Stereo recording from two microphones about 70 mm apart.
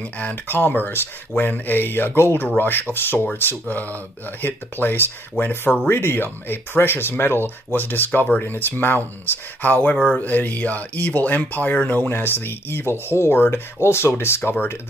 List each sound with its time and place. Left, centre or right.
0.2 s speech: left